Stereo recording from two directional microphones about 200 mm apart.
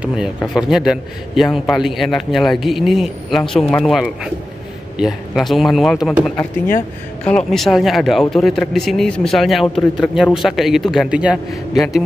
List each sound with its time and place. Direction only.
0.0 s speech: 5° right (ahead or behind)